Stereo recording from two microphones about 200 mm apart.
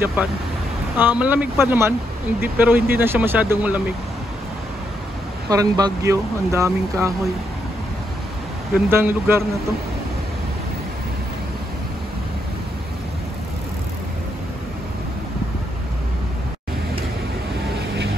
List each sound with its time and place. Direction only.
0.0 s speech: 10° right (ahead or behind)
5.5 s speech: 20° right (ahead or behind)
8.7 s speech: 10° right (ahead or behind)